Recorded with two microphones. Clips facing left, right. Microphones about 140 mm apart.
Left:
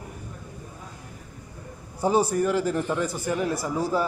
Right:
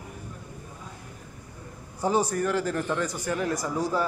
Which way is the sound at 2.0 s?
10° left (ahead or behind).